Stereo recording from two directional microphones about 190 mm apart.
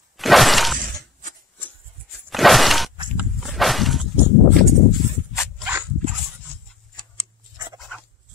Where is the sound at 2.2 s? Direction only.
Centre (ahead or behind).